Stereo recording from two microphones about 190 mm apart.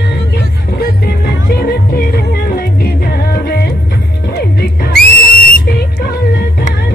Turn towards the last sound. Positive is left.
turn(degrees=50)  # may be behind; listen again after turning